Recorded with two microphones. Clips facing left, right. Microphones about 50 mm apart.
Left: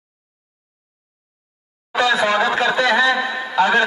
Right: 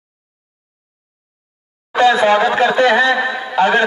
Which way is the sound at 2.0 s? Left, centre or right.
Right.